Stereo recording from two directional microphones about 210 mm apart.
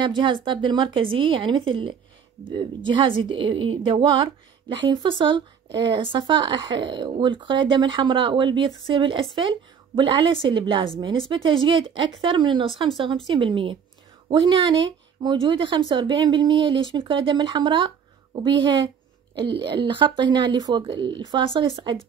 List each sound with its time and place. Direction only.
0.0 s a woman's voice: 20° right (ahead or behind)